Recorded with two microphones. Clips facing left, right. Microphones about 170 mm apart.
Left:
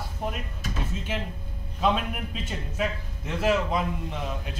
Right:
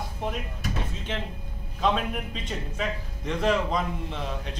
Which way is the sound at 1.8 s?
5° left (ahead or behind).